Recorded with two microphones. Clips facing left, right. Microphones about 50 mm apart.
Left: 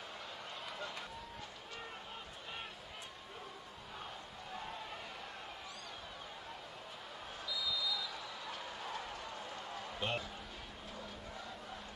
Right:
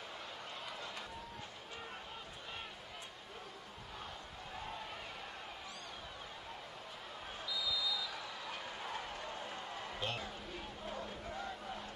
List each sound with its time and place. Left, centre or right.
7.4 s basketball bounce: centre
8.9 s a sound: right
10.0 s speech: left